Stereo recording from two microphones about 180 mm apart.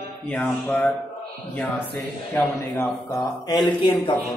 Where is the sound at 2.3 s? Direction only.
15° left (ahead or behind).